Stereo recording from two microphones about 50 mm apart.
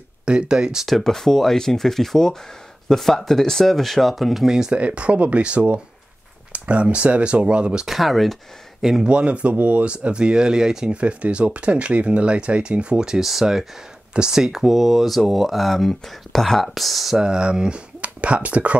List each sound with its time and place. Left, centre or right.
0.2 s speech: centre
0.8 s speech: centre
4.5 s speech: centre
4.7 s speech: right
7.8 s speech: centre
9.0 s speech: right
11.0 s speech: right; by 17.2 s centre
17.2 s speech: centre